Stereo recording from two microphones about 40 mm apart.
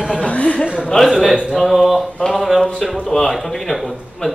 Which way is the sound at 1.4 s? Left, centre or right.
Centre.